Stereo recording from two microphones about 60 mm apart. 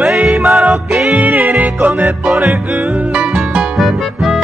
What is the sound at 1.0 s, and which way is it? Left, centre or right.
Music, right.